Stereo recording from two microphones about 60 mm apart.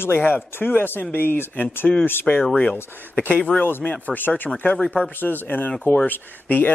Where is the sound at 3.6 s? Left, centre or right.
Left.